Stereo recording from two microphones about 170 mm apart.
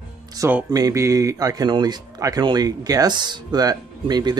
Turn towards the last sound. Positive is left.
turn(degrees=-25)  # may be behind; listen again after turning